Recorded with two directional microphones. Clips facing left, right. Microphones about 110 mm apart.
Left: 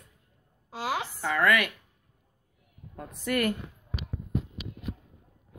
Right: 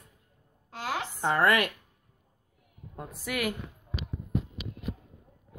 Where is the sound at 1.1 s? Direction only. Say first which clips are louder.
Right 1 dB; 25° right (ahead or behind).